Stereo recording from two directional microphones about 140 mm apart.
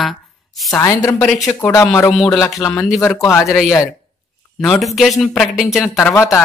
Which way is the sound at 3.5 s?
Centre (ahead or behind).